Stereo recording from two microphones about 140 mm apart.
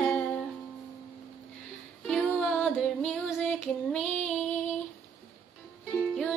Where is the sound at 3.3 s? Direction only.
5° left (ahead or behind).